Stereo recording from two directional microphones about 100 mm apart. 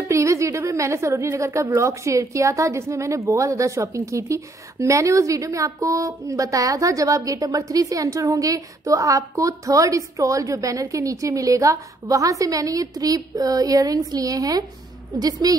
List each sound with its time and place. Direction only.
0.1 s a woman's voice: 30° right (ahead or behind)